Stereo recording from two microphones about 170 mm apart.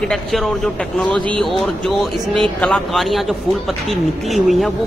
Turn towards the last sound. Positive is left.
turn(degrees=0)  # may be behind; listen again after turning